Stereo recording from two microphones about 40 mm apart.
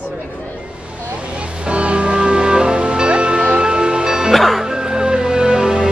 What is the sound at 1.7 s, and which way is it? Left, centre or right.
Music, right.